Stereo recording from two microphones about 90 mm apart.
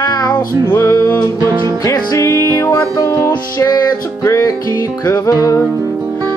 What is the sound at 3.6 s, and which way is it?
Music, 40° left (ahead or behind).